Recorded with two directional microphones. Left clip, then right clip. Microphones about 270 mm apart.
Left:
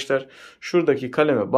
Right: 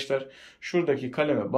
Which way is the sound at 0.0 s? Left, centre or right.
Centre.